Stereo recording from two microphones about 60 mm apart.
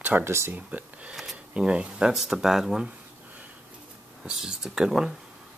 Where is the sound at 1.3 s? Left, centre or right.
Centre.